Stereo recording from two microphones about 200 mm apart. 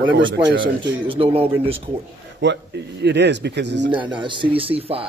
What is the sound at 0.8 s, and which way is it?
Speech, 25° right (ahead or behind).